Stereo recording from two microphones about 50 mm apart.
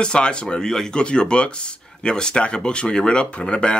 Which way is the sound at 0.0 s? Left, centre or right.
Centre.